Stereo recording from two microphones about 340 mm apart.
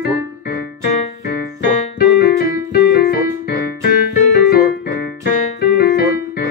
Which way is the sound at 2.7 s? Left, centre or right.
Left.